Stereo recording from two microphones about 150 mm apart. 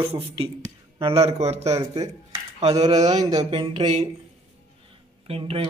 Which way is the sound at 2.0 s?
25° right (ahead or behind).